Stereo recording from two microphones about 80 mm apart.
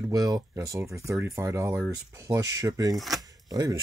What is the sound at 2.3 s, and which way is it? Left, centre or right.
Speech, right.